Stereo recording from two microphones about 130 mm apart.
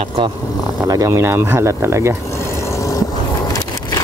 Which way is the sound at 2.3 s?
20° left (ahead or behind).